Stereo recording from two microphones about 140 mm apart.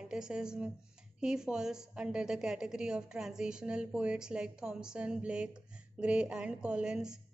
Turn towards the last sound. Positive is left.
turn(degrees=-5)  # may be behind; listen again after turning